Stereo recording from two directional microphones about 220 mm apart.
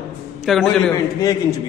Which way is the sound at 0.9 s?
15° left (ahead or behind).